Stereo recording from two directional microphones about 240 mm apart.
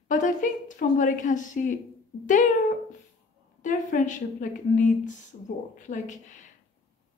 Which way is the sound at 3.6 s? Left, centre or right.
Left.